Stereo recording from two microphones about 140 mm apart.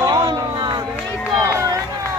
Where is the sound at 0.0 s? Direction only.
30° right (ahead or behind).